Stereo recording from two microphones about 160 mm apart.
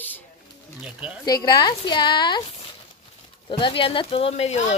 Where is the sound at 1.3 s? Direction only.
25° left (ahead or behind).